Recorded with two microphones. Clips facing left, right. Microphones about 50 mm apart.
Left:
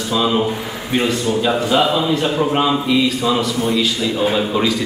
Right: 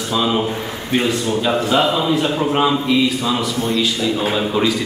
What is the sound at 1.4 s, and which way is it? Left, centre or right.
A man's voice, centre.